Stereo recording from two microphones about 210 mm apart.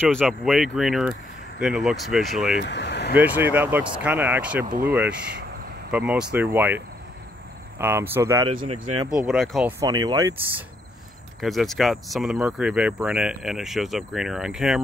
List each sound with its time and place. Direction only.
0.0 s speech: 5° left (ahead or behind)
2.6 s speech: 55° left (ahead or behind)
3.2 s speech: 10° right (ahead or behind)
7.8 s speech: 10° right (ahead or behind)
8.5 s speech: 25° right (ahead or behind)
9.1 s speech: 5° right (ahead or behind)
9.8 s speech: 20° right (ahead or behind)
11.4 s speech: centre (ahead or behind)